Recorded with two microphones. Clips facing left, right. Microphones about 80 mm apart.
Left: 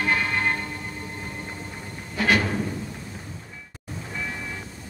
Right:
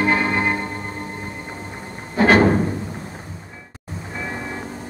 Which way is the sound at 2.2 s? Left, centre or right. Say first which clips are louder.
Right 9 dB; right.